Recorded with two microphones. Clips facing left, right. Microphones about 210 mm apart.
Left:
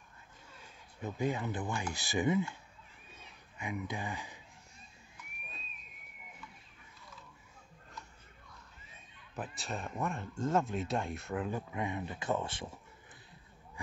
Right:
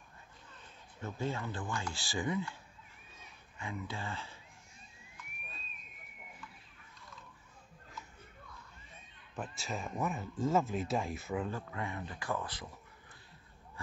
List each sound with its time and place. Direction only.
0.5 s speech: 15° left (ahead or behind)
3.5 s speech: 15° left (ahead or behind)
5.5 s a sound: centre (ahead or behind)
9.6 s speech: centre (ahead or behind)
11.5 s speech: 20° left (ahead or behind)